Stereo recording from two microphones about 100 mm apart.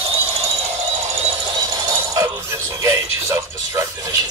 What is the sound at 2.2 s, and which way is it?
Music, 25° right (ahead or behind).